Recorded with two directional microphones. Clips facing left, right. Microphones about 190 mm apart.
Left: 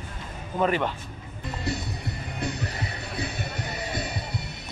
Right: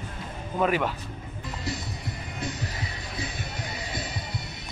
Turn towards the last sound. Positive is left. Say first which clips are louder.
# left 3 dB
turn(degrees=60)  # may be behind; listen again after turning